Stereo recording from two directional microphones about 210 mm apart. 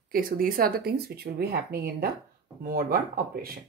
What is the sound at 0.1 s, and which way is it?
A woman's voice, 40° right (ahead or behind).